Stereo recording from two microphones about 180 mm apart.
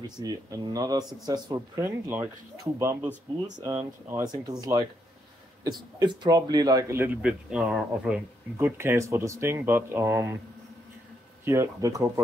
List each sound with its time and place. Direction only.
0.0 s a man's voice: 20° right (ahead or behind)
11.4 s a man's voice: 15° right (ahead or behind)